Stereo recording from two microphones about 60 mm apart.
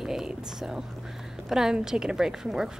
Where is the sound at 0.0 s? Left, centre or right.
Centre.